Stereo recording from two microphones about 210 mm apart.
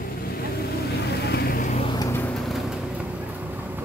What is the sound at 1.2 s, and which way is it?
Vehicle, 50° left (ahead or behind).